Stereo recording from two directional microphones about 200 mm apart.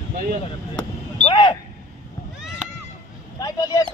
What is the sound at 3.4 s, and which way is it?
Speech, 20° left (ahead or behind).